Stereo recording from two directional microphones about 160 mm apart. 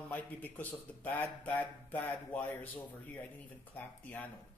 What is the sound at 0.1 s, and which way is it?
Speech, 10° left (ahead or behind).